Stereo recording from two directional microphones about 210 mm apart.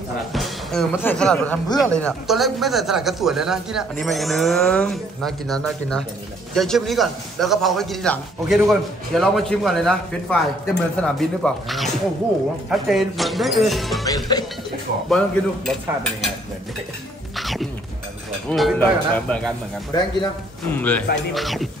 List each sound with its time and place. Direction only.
0.3 s speech: centre (ahead or behind)
14.0 s speech: 15° left (ahead or behind)
15.0 s speech: centre (ahead or behind)
17.4 s music: centre (ahead or behind)
18.5 s speech: centre (ahead or behind)
19.9 s speech: 20° left (ahead or behind)
20.7 s speech: 5° left (ahead or behind)